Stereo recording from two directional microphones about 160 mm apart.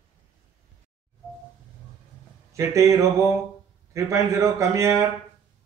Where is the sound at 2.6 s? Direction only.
20° right (ahead or behind).